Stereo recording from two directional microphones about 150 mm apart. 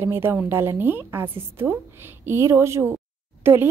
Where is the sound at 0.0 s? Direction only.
15° right (ahead or behind).